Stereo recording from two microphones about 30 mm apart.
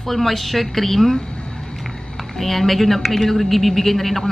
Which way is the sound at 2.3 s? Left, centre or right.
Centre.